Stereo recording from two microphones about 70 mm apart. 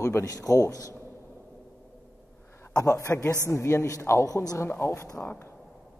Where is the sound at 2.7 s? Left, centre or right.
Left.